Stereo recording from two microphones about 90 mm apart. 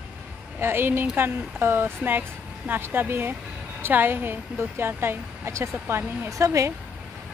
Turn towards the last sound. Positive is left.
turn(degrees=-35)  # may be behind; listen again after turning